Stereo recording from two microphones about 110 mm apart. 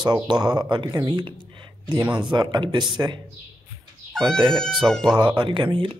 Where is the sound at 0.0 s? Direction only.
45° right (ahead or behind).